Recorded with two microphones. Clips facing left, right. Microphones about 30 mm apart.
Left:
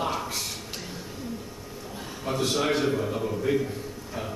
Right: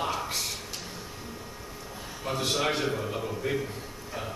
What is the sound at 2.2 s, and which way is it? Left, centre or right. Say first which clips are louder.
A man's voice: left 2 dB; centre.